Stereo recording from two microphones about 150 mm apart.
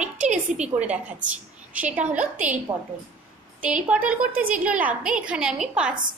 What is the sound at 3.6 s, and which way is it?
A woman's voice, 10° right (ahead or behind).